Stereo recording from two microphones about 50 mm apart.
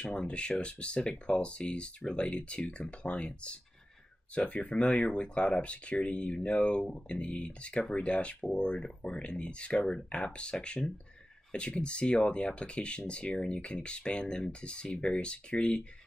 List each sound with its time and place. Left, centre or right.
0.0 s speech: left